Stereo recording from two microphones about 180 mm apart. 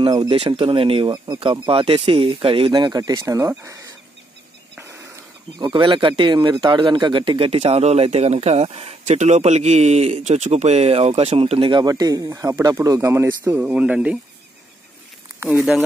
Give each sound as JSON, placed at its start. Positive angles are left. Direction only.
{"t": 0.0, "sound": "a man's voice", "side_deg": -25}
{"t": 5.6, "sound": "a man's voice", "side_deg": -25}
{"t": 15.4, "sound": "speech", "side_deg": -5}